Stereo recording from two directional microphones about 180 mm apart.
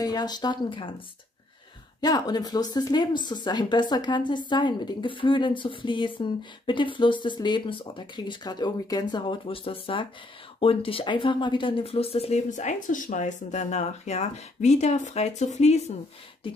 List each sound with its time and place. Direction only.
0.0 s speech: 20° left (ahead or behind); by 15.8 s 40° left (ahead or behind)